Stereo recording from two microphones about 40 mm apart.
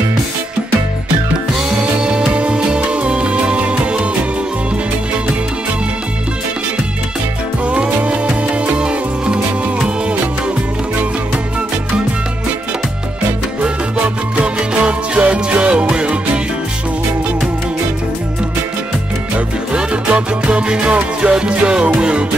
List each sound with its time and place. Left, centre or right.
1.8 s music: right
7.6 s music: right
14.3 s music: right
19.3 s music: right